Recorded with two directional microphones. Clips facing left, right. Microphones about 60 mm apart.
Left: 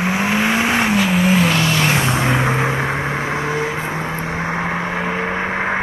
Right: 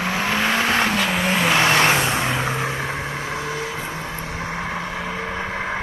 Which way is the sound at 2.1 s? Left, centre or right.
Left.